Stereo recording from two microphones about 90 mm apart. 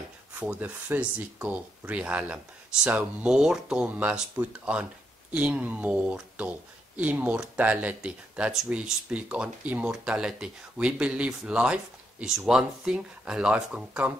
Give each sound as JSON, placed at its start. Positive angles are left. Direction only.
{"t": 0.3, "sound": "speech", "side_deg": -15}